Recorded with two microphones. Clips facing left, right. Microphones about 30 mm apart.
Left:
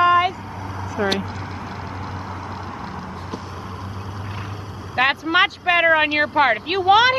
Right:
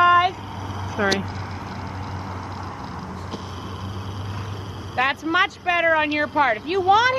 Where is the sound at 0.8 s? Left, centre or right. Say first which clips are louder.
Even; centre.